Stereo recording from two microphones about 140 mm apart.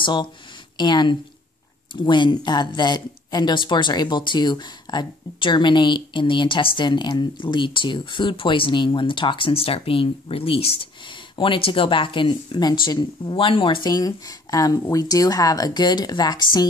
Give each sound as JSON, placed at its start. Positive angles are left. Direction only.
{"t": 0.0, "sound": "speech", "side_deg": 35}
{"t": 13.8, "sound": "speech", "side_deg": 25}